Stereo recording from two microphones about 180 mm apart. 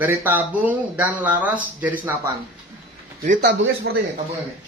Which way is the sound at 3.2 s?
60° right (ahead or behind).